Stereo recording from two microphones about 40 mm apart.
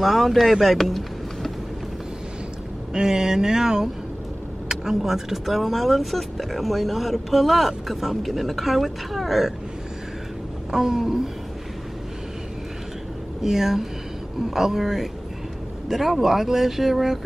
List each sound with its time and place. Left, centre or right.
0.0 s speech: centre
2.9 s speech: centre
10.7 s speech: centre
13.4 s speech: centre